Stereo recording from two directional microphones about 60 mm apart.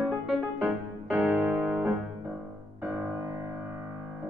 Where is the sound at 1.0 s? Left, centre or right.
Right.